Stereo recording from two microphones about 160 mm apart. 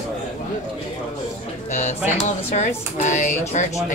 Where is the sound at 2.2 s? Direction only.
45° left (ahead or behind).